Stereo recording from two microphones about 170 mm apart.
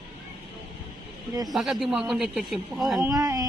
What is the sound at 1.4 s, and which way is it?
Speech, centre (ahead or behind).